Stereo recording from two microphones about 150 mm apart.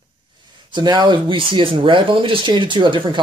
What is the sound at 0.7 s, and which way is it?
Speech, 30° right (ahead or behind).